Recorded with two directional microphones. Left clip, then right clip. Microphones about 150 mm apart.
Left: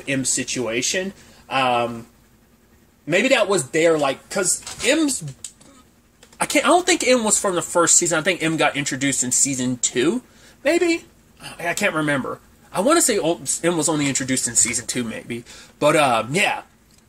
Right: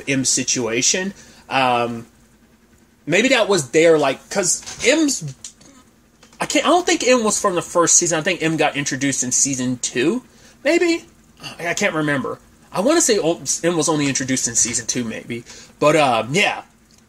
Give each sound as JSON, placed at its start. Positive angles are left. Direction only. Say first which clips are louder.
{"t": 0.0, "sound": "speech", "louder": "right 4 dB", "side_deg": -30}
{"t": 3.1, "sound": "speech", "louder": "right 2 dB", "side_deg": -30}
{"t": 6.3, "sound": "speech", "louder": "even", "side_deg": -10}
{"t": 10.6, "sound": "speech", "louder": "right 2 dB", "side_deg": -15}